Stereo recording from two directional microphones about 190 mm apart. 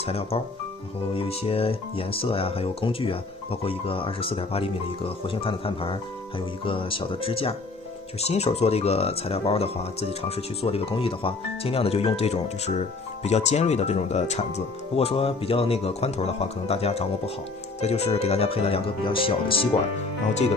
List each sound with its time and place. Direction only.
0.0 s speech: 30° left (ahead or behind)